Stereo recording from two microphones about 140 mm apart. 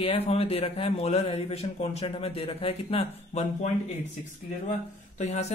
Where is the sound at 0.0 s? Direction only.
45° left (ahead or behind).